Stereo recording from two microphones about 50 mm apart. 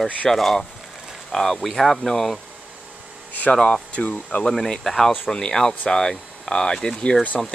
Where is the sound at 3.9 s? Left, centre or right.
Left.